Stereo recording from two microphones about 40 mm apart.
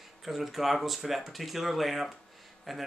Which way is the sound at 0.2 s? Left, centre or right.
Centre.